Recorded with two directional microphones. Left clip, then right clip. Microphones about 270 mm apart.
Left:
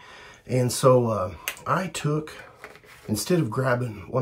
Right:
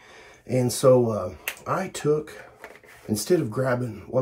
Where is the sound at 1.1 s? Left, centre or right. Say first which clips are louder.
Left 1 dB; left.